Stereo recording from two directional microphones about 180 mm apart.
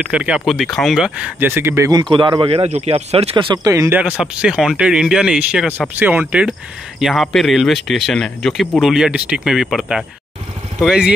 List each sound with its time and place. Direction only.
0.1 s speech: 5° right (ahead or behind)
4.0 s speech: 5° right (ahead or behind)